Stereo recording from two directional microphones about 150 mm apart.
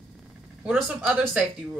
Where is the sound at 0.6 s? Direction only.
5° right (ahead or behind).